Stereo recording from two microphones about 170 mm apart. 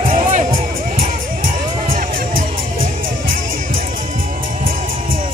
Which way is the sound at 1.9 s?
55° right (ahead or behind).